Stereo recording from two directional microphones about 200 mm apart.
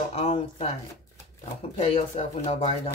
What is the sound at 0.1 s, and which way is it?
Speech, 30° left (ahead or behind).